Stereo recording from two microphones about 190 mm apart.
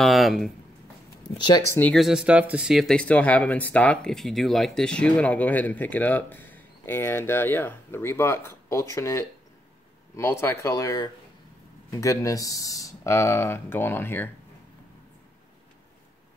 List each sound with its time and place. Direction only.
0.0 s speech: centre (ahead or behind)
1.8 s speech: 5° left (ahead or behind)